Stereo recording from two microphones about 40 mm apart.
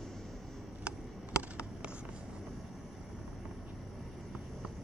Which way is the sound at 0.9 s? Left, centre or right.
Right.